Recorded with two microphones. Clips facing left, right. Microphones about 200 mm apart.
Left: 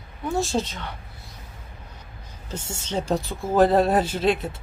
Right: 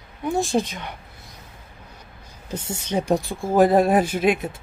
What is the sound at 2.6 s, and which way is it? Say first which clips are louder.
Speech: right 3 dB; 15° right (ahead or behind).